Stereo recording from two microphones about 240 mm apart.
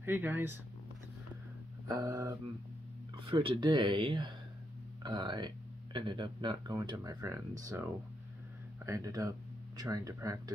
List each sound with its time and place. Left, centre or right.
0.0 s speech: centre
1.9 s speech: centre